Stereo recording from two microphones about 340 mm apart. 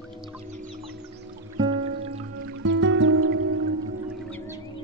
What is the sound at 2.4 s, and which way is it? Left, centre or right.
Music, right.